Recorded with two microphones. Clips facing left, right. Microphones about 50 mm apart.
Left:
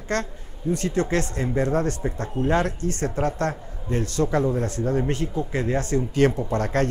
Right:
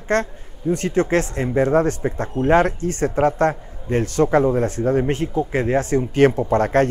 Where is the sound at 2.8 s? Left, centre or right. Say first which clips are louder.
Right 6 dB; right.